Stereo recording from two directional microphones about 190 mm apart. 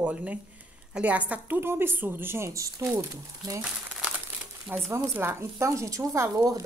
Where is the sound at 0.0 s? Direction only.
10° right (ahead or behind).